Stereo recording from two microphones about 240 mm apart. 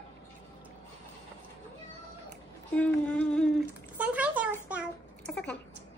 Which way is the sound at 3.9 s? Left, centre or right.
Centre.